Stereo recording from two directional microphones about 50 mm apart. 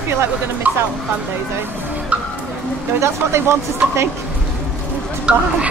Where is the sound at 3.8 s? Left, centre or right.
Right.